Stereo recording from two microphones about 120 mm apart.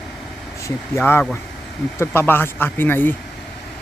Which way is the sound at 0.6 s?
20° left (ahead or behind).